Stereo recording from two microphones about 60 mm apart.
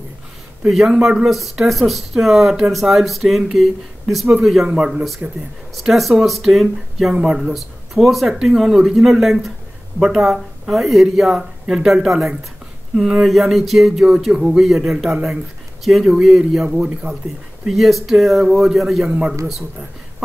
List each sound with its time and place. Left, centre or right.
0.7 s speech: centre
4.6 s speech: centre
5.8 s speech: centre
17.6 s speech: centre
19.0 s speech: centre